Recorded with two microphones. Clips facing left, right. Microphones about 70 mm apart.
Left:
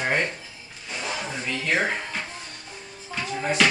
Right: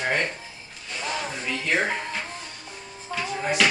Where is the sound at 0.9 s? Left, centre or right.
Centre.